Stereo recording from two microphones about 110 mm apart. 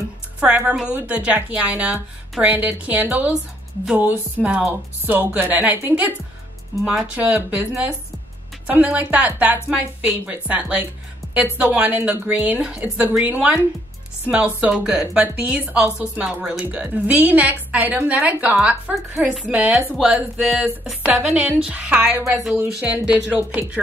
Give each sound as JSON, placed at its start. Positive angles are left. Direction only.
{"t": 0.4, "sound": "a woman's voice", "side_deg": -10}